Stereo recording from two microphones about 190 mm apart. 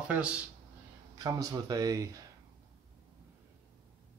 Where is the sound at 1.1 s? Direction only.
20° right (ahead or behind).